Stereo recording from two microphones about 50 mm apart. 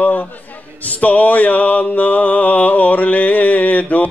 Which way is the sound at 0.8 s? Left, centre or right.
Left.